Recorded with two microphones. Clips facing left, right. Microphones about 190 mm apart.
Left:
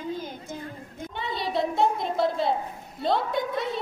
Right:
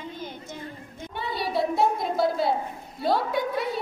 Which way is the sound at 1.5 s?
5° right (ahead or behind).